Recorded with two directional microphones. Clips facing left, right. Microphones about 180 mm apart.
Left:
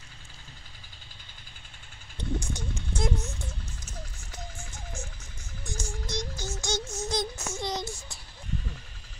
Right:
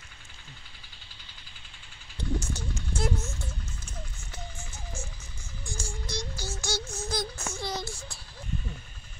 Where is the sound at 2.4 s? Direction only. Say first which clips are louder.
Even; 15° left (ahead or behind).